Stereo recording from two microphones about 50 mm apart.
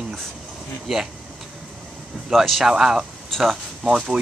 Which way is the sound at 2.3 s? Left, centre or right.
Centre.